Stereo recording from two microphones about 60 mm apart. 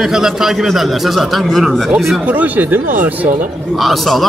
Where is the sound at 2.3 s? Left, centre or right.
Right.